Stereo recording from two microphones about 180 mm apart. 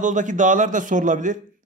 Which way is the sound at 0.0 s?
45° right (ahead or behind).